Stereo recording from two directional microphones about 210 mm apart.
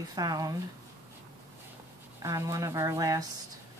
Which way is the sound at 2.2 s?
15° right (ahead or behind).